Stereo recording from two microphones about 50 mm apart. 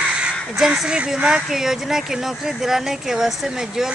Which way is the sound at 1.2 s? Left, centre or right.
Centre.